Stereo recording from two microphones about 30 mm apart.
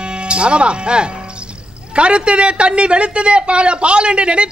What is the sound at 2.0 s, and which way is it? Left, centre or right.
A man's voice, right.